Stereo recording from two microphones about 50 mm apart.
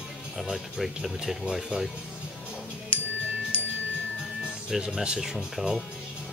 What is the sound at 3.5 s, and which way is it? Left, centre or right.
Chime, left.